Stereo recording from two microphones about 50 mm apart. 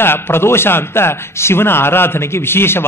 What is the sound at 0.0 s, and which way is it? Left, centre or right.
A man's voice, left.